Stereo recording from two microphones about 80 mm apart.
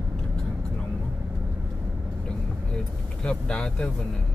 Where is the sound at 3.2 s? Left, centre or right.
Centre.